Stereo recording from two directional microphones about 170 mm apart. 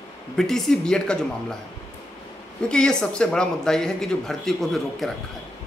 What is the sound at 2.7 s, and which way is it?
Speech, 5° left (ahead or behind).